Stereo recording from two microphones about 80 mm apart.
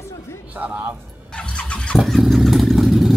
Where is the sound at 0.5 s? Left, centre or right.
Centre.